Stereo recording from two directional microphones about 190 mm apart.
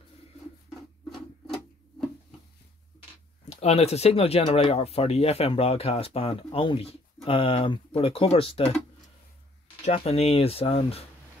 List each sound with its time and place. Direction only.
1.1 s a sound: centre (ahead or behind)
3.4 s speech: 35° left (ahead or behind)
9.8 s speech: 35° left (ahead or behind)